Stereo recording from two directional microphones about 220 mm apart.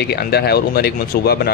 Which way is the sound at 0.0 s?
45° left (ahead or behind).